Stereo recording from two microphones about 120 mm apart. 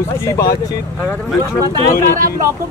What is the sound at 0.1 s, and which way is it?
Speech, 25° left (ahead or behind).